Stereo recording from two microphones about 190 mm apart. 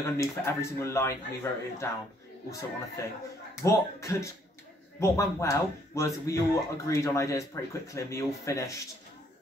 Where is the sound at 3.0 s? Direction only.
15° left (ahead or behind).